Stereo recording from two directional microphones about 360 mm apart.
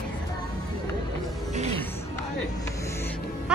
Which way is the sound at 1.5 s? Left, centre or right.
Centre.